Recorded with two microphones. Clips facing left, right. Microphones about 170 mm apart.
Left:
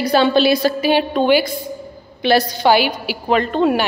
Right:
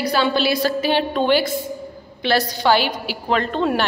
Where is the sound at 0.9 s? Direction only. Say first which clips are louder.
Left 4 dB; 5° left (ahead or behind).